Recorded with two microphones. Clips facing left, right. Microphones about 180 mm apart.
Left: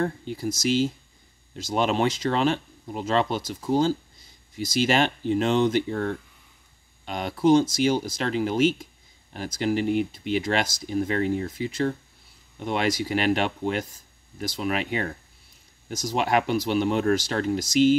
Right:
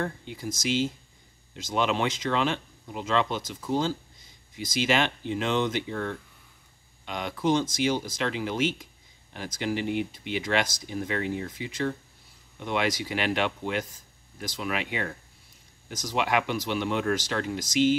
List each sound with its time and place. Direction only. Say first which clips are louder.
0.0 s speech: left 5 dB; 35° left (ahead or behind)